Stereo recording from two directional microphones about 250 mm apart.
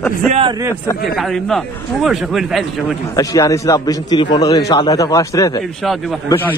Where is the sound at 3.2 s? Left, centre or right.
Centre.